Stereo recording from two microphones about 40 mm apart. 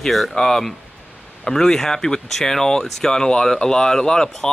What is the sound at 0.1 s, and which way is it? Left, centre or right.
Speech, centre.